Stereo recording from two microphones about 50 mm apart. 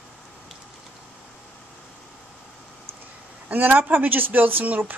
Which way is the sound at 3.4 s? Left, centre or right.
Right.